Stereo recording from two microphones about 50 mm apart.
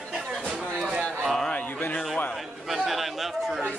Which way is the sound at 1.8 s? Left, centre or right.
Left.